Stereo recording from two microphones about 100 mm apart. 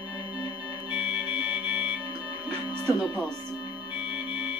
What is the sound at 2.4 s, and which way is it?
Music, 20° right (ahead or behind).